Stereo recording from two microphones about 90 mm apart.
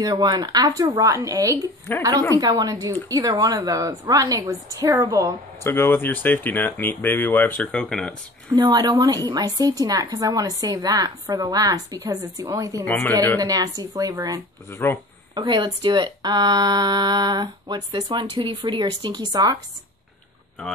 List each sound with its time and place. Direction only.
0.0 s speech: 50° right (ahead or behind)
5.6 s speech: 25° left (ahead or behind)
7.8 s speech: 5° left (ahead or behind)
8.5 s speech: 50° right (ahead or behind)
14.7 s speech: 30° left (ahead or behind)
15.3 s speech: 55° right (ahead or behind)